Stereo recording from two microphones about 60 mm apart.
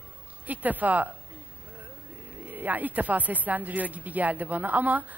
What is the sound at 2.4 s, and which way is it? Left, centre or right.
Speech, right.